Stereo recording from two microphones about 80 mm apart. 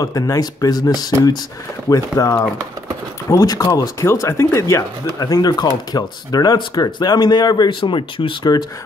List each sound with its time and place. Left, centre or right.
0.0 s speech: left
4.0 s speech: left
5.2 s speech: left